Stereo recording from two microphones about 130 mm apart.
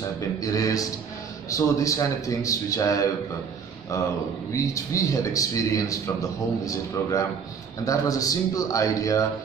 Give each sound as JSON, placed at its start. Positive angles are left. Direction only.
{"t": 0.4, "sound": "a man's voice", "side_deg": 25}